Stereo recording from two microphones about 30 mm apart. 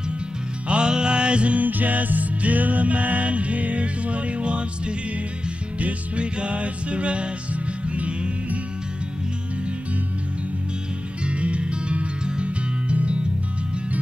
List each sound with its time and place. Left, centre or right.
0.7 s music: right
1.6 s music: right
11.2 s music: right